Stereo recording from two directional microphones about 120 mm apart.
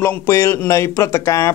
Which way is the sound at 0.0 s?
25° left (ahead or behind).